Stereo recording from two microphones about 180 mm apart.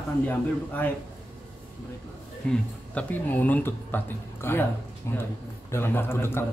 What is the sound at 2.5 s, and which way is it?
Speech, 5° left (ahead or behind).